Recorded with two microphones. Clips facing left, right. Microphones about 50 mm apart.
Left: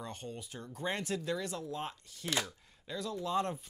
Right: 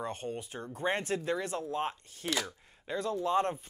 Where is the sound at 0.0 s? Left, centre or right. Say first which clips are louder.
Right 6 dB; right.